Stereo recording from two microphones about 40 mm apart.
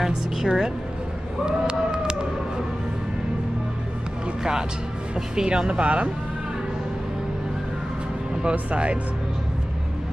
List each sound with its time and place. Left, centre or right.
0.0 s a woman's voice: centre
1.4 s a sound: right
4.4 s speech: centre
8.5 s speech: right